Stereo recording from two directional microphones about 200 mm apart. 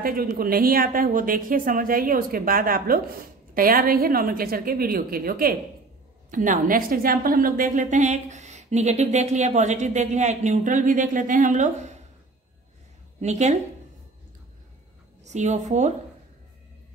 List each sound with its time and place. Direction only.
0.0 s a woman's voice: 45° right (ahead or behind)
13.2 s a woman's voice: 35° right (ahead or behind)
15.2 s a woman's voice: 35° right (ahead or behind)